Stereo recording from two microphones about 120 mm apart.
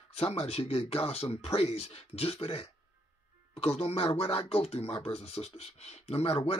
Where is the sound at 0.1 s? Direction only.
55° left (ahead or behind).